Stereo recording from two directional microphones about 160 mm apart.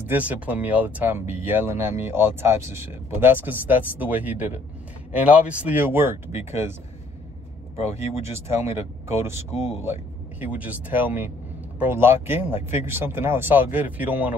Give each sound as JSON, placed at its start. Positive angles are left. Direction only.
{"t": 0.0, "sound": "speech", "side_deg": -10}
{"t": 7.9, "sound": "speech", "side_deg": -15}